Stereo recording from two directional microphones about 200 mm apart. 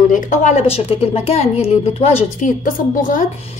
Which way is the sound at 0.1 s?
40° left (ahead or behind).